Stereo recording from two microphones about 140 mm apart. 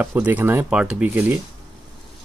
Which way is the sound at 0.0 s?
15° right (ahead or behind).